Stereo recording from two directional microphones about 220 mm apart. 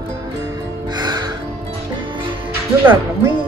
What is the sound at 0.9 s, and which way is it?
Music, 20° right (ahead or behind).